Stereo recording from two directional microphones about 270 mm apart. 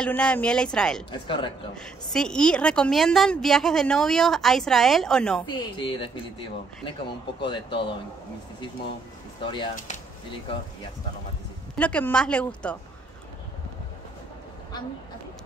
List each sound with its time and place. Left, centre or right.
0.0 s a woman's voice: centre
1.2 s speech: centre
1.8 s a woman's voice: centre
5.5 s speech: centre
7.3 s speech: centre
9.4 s speech: centre
11.8 s a woman's voice: centre